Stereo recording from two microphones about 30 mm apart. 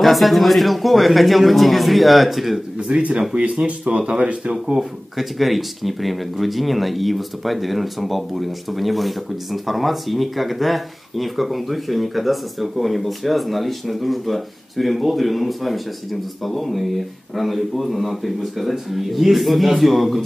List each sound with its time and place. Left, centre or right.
0.0 s speech: centre
2.8 s speech: right
3.9 s speech: right
4.7 s speech: centre